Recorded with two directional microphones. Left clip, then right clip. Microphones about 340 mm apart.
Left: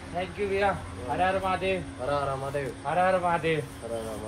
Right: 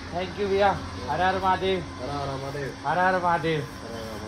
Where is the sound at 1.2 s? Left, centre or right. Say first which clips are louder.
Right 3 dB; centre.